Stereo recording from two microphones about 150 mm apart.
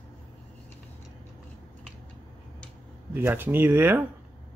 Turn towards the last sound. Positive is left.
turn(degrees=-15)  # may be behind; listen again after turning